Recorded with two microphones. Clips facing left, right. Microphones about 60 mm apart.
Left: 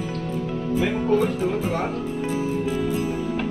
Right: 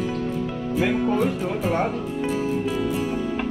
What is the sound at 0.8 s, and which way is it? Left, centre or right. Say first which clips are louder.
Music: even; centre.